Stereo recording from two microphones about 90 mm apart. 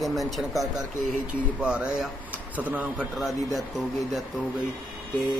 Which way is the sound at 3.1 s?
5° right (ahead or behind).